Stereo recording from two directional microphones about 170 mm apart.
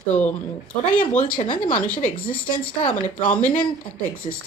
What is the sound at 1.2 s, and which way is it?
Speech, 50° left (ahead or behind).